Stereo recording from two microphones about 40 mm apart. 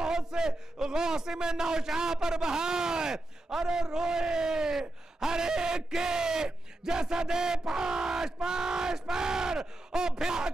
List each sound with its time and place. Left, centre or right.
0.0 s a man's voice: centre